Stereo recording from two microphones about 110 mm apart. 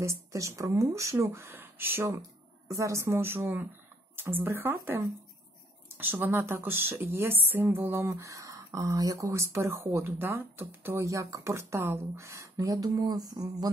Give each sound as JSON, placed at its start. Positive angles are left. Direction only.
{"t": 0.0, "sound": "speech", "side_deg": -25}